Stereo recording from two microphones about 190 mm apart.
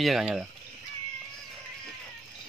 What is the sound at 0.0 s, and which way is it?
Speech, centre (ahead or behind).